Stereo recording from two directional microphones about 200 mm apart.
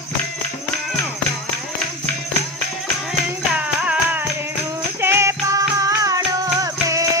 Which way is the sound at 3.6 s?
5° right (ahead or behind).